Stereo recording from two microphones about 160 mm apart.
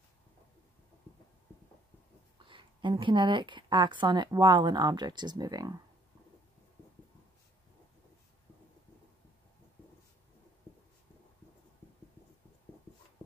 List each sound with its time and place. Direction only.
2.3 s a woman's voice: 30° right (ahead or behind)